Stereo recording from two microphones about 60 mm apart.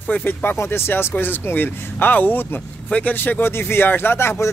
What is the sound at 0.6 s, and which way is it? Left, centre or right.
Speech, left.